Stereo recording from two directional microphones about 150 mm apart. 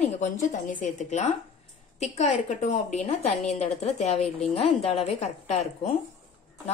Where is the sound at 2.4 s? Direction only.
55° left (ahead or behind).